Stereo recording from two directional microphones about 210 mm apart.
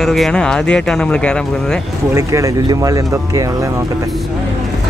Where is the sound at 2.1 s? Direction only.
15° right (ahead or behind).